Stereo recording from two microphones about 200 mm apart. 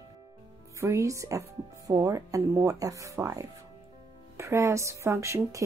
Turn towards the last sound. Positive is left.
turn(degrees=-15)  # may be behind; listen again after turning